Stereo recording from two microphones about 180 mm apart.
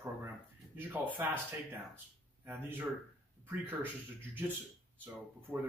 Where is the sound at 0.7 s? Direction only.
10° right (ahead or behind).